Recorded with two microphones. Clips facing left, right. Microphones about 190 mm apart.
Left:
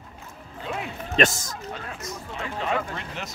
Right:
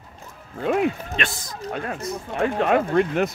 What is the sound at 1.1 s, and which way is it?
Speech, 45° left (ahead or behind).